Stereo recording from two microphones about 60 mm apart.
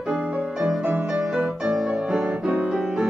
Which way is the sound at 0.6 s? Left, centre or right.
Centre.